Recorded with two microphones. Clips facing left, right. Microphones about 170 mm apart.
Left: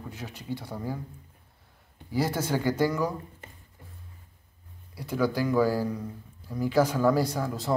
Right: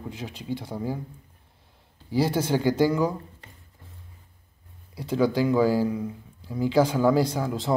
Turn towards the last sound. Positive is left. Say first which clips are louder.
# right 3 dB
turn(degrees=-20)  # may be behind; listen again after turning